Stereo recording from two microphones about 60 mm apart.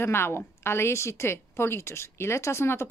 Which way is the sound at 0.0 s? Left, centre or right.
Left.